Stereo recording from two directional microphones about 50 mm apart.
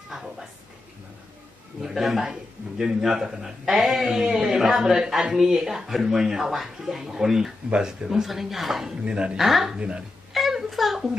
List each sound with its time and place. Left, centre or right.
1.8 s speech: centre
9.0 s speech: right
9.4 s speech: centre
9.8 s speech: centre
10.3 s a sound: centre